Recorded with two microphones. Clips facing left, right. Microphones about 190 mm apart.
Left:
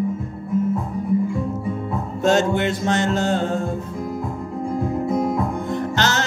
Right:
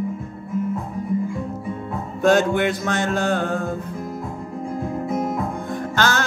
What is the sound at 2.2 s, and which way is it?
Music, 25° left (ahead or behind).